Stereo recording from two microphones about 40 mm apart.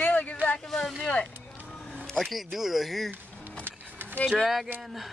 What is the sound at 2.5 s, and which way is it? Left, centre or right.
Speech, centre.